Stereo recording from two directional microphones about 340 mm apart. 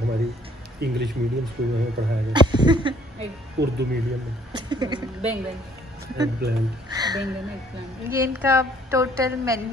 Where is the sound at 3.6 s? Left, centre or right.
Right.